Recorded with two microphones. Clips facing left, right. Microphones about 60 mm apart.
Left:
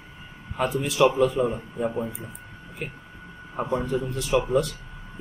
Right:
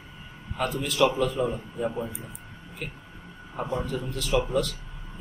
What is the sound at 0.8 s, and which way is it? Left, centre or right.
Speech, centre.